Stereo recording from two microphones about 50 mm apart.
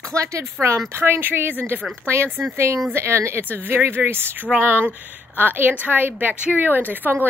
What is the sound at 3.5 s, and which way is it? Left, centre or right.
Speech, right.